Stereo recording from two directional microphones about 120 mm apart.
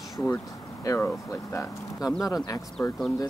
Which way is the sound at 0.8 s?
20° left (ahead or behind).